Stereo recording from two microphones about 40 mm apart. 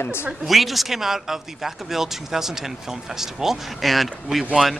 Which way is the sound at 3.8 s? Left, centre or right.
Centre.